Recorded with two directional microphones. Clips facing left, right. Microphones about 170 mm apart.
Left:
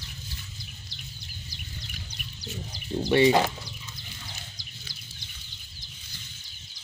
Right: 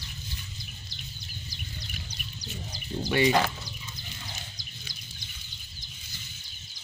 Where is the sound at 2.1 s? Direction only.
40° right (ahead or behind).